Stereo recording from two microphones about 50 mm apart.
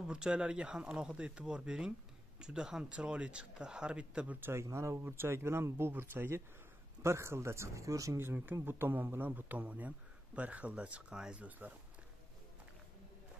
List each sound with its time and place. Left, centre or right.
0.1 s speech: centre
4.4 s speech: right
5.1 s speech: right
7.0 s speech: right
8.2 s a man's voice: right; by 11.4 s centre